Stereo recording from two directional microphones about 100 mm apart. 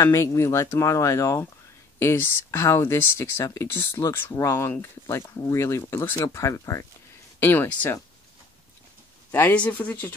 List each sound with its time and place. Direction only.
0.0 s speech: 30° left (ahead or behind)
7.3 s speech: 20° left (ahead or behind)
9.3 s speech: 15° left (ahead or behind)